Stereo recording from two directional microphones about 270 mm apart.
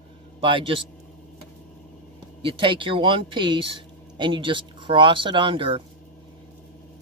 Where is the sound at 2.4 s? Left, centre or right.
Centre.